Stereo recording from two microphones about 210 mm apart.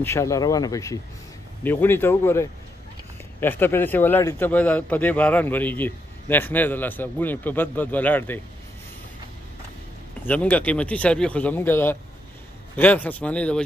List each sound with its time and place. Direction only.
0.0 s a man's voice: 15° left (ahead or behind)
10.2 s a man's voice: 5° left (ahead or behind)